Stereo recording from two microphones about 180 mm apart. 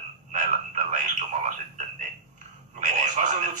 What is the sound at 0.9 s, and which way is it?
Radio, 45° right (ahead or behind).